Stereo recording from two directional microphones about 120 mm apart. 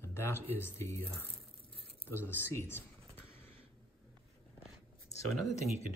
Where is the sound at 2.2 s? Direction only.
20° left (ahead or behind).